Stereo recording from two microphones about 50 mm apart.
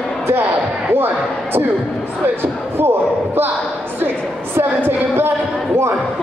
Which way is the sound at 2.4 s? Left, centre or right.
Right.